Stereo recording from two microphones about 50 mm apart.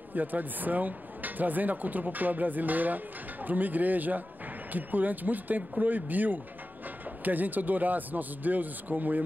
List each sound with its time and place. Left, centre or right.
0.1 s speech: right